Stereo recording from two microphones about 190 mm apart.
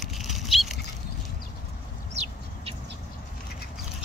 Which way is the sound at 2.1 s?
30° right (ahead or behind).